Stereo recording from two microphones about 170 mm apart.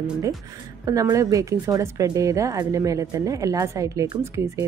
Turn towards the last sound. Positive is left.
turn(degrees=-15)  # may be behind; listen again after turning